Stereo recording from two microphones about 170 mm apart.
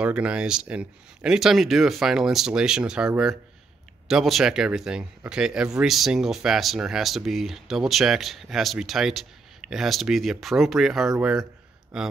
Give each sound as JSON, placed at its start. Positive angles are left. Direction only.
{"t": 0.0, "sound": "speech", "side_deg": -5}
{"t": 4.1, "sound": "speech", "side_deg": 0}